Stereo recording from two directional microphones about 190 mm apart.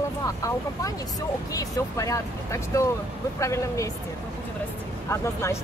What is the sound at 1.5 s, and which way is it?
Speech, 20° left (ahead or behind).